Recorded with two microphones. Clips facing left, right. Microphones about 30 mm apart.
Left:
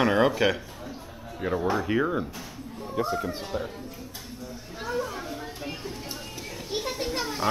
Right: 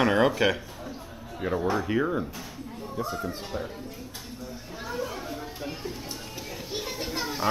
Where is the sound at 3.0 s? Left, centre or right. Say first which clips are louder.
Left 4 dB; left.